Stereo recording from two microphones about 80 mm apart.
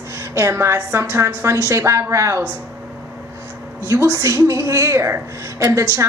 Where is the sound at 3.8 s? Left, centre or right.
Right.